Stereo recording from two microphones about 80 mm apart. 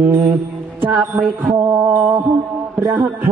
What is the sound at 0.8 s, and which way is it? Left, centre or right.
Music, right.